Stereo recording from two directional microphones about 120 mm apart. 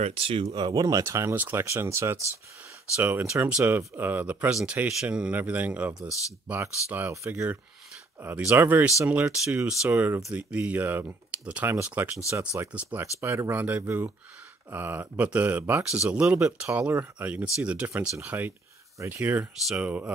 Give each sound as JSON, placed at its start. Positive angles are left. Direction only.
{"t": 0.0, "sound": "speech", "side_deg": -55}